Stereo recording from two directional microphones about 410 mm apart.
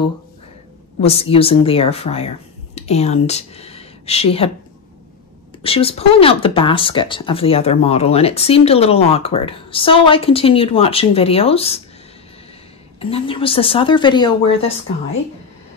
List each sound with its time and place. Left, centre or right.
1.0 s speech: centre
5.6 s speech: centre
13.0 s speech: centre